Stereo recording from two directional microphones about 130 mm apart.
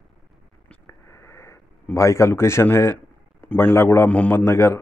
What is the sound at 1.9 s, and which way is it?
A man's voice, 20° left (ahead or behind).